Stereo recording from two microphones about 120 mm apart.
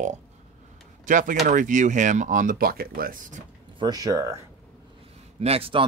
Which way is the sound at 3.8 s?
30° right (ahead or behind).